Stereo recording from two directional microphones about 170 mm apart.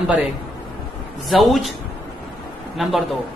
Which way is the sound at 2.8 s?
Centre (ahead or behind).